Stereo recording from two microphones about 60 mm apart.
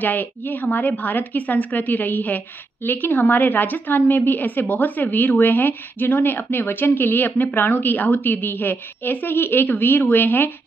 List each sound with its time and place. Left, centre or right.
0.0 s a woman's voice: left